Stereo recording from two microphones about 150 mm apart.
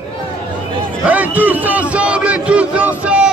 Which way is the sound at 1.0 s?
10° right (ahead or behind).